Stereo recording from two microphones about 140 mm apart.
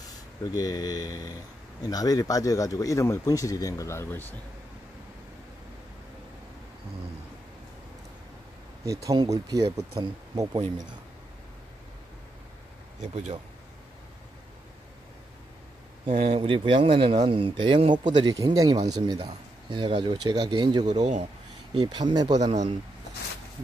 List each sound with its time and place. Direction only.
0.0 s speech: 25° left (ahead or behind)
8.8 s speech: 25° right (ahead or behind)
13.0 s speech: 55° right (ahead or behind)
16.2 s speech: 40° right (ahead or behind)